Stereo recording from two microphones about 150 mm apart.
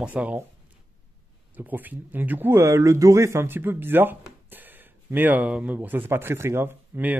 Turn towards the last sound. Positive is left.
turn(degrees=-10)  # may be behind; listen again after turning